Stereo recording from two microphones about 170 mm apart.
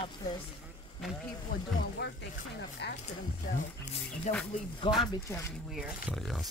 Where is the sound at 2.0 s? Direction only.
85° left.